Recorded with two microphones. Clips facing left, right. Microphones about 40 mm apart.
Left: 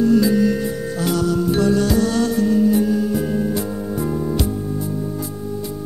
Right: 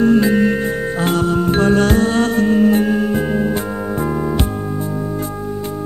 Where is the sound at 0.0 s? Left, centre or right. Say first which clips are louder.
Right 2 dB; right.